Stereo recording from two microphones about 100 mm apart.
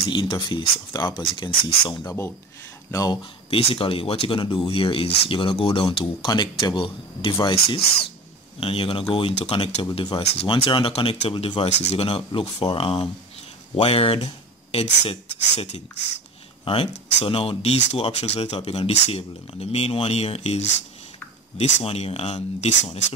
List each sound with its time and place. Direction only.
0.1 s speech: 50° left (ahead or behind)
3.4 s speech: 70° left (ahead or behind)
7.5 s speech: 70° left (ahead or behind)
10.1 s speech: 65° left (ahead or behind)
12.3 s speech: 50° left (ahead or behind)
12.7 s speech: 70° left (ahead or behind)
14.7 s speech: 80° left
16.6 s speech: 70° left (ahead or behind); by 22.9 s 90° left